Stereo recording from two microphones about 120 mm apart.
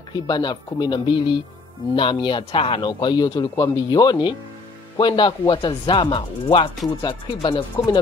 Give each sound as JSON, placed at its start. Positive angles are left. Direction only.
{"t": 0.1, "sound": "speech", "side_deg": 35}